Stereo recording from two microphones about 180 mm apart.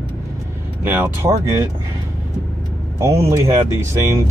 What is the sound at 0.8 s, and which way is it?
Speech, 10° right (ahead or behind).